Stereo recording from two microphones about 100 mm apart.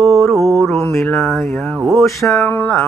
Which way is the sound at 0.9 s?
20° left (ahead or behind).